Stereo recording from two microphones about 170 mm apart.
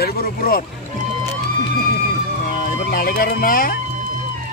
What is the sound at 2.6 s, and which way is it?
Speech, 60° left (ahead or behind).